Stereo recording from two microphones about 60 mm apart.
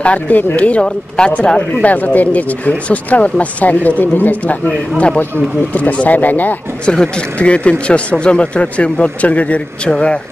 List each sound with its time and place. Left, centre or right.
0.0 s speech: left
1.8 s speech: left
4.9 s speech: centre
6.9 s speech: centre